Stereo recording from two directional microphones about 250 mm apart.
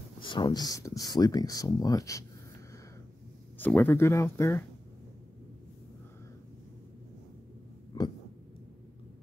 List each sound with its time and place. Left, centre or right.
0.2 s speech: centre
3.5 s speech: centre
7.9 s a sound: centre